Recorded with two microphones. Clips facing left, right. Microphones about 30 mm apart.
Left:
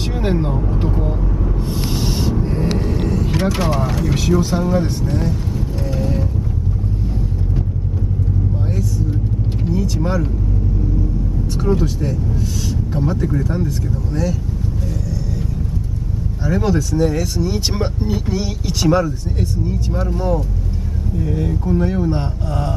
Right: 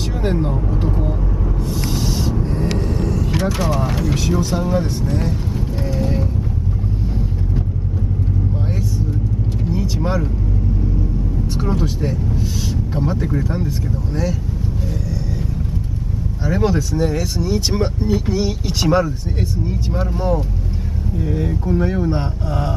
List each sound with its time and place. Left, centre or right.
0.2 s speech: centre
0.8 s speech: centre
1.7 s a sound: left
2.5 s vehicle: centre
3.5 s speech: centre
4.0 s speech: centre
5.9 s mechanisms: centre
9.7 s vehicle: centre
11.5 s speech: centre
16.4 s speech: centre
17.5 s speech: centre
18.3 s speech: centre